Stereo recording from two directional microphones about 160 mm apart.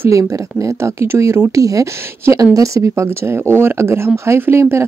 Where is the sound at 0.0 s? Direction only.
20° right (ahead or behind).